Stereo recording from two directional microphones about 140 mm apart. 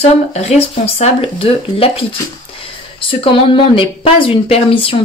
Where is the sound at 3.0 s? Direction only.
40° left (ahead or behind).